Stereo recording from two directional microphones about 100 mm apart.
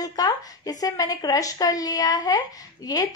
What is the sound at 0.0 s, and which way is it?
Speech, 40° left (ahead or behind).